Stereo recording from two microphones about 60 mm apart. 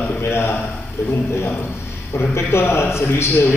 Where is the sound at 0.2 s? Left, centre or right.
Left.